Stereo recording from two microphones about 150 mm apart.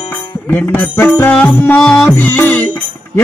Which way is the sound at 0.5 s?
15° left (ahead or behind).